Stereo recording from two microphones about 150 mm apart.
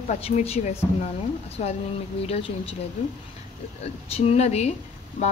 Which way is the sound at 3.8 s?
45° left (ahead or behind).